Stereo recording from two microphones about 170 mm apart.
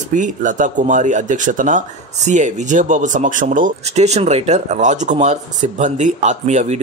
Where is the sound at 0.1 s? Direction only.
45° right (ahead or behind).